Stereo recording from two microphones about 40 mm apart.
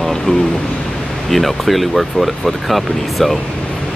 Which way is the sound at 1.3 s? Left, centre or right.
Centre.